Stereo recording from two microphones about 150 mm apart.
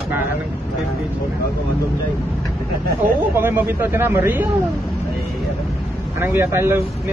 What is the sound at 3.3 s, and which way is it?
Speech, 15° right (ahead or behind).